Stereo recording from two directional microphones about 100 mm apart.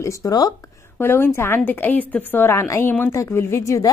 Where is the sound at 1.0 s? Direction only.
25° left (ahead or behind).